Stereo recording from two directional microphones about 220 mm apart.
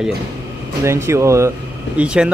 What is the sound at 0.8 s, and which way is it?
Speech, 10° right (ahead or behind).